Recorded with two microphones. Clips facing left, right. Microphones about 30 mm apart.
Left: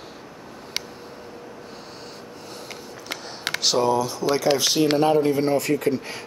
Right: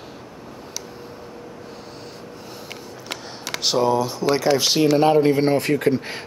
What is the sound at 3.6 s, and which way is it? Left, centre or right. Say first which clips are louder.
Speech: right 2 dB; centre.